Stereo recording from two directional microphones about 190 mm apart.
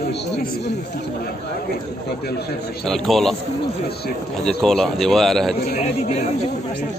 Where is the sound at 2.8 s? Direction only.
Centre (ahead or behind).